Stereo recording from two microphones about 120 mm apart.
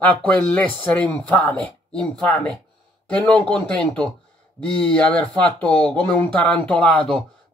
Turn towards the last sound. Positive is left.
turn(degrees=10)  # may be behind; listen again after turning